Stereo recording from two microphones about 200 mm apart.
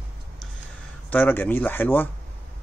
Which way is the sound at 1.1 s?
10° left (ahead or behind).